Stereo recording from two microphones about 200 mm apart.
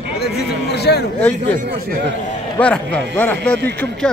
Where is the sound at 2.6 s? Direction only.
5° left (ahead or behind).